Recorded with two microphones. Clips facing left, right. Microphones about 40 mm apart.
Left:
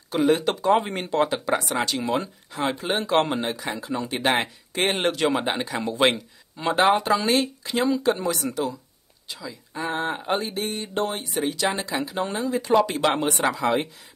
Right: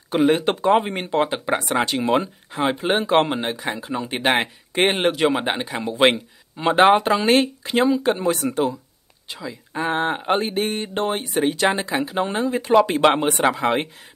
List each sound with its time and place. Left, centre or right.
0.1 s speech: right
6.8 s speech: right